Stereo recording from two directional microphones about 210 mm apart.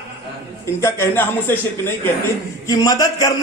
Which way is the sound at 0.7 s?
10° left (ahead or behind).